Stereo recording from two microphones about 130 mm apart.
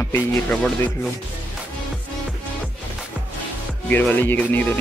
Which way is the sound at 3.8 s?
15° left (ahead or behind).